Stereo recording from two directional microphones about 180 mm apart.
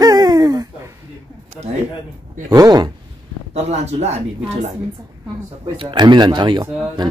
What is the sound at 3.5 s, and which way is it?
Speech, 35° right (ahead or behind).